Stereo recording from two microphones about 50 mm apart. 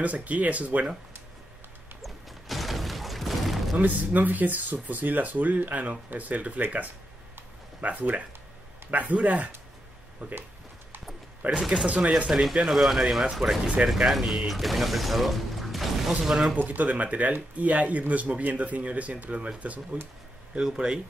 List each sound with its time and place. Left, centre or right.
0.0 s speech: right
2.0 s a sound: centre
3.7 s speech: right
11.7 s speech: right
12.6 s speech: centre
16.1 s speech: centre
16.5 s speech: right
20.5 s speech: centre